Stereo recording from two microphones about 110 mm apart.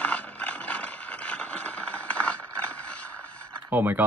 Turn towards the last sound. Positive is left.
turn(degrees=-20)  # may be behind; listen again after turning